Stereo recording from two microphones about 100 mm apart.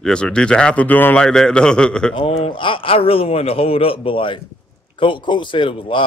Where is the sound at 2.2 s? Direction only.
65° left (ahead or behind).